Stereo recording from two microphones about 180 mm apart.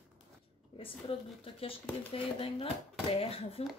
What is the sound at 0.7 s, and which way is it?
Speech, 30° left (ahead or behind).